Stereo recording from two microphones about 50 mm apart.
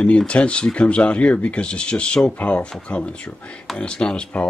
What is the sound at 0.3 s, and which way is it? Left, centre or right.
Speech, left.